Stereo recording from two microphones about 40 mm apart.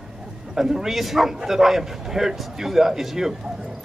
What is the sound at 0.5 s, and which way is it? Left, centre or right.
Speech, centre.